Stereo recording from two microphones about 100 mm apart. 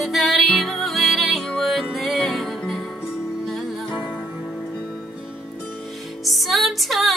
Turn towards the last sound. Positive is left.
turn(degrees=0)  # may be behind; listen again after turning